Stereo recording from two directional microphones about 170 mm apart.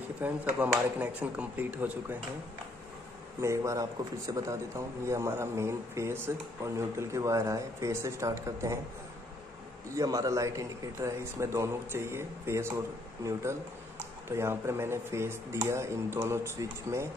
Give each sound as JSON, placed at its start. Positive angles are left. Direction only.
{"t": 0.2, "sound": "a man's voice", "side_deg": -10}
{"t": 3.3, "sound": "a man's voice", "side_deg": -15}
{"t": 9.9, "sound": "a man's voice", "side_deg": -20}